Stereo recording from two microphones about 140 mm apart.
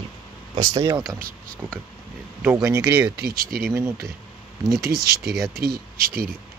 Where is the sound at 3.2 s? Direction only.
90° right.